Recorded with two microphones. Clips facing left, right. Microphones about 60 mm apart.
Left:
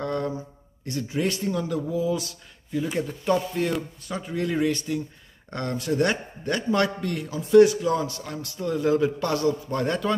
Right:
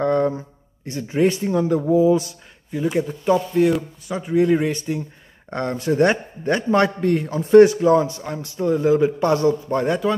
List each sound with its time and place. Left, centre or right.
0.0 s a sound: right
0.8 s a man's voice: right
2.7 s a man's voice: centre
9.8 s speech: centre